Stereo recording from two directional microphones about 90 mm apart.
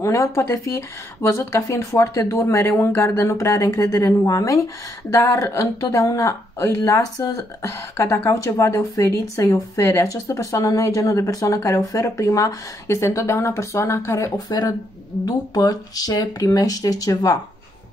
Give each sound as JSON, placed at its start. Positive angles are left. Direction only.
{"t": 0.0, "sound": "speech", "side_deg": 35}